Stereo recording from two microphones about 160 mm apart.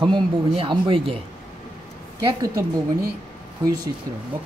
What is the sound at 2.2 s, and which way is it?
Speech, 25° right (ahead or behind).